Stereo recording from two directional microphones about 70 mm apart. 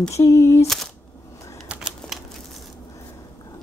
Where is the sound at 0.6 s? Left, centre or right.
Centre.